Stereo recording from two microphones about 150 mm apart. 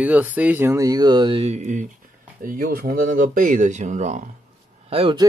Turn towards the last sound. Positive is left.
turn(degrees=-40)  # may be behind; listen again after turning